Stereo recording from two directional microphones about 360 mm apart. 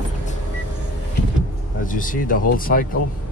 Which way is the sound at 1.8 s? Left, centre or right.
Left.